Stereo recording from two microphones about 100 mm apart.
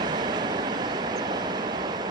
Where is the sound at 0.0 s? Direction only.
45° right (ahead or behind).